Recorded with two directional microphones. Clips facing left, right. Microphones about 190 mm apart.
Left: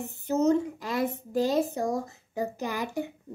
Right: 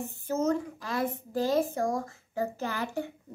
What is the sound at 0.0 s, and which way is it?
A child's voice, 20° left (ahead or behind).